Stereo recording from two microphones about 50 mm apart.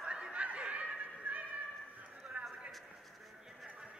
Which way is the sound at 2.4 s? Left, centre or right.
Right.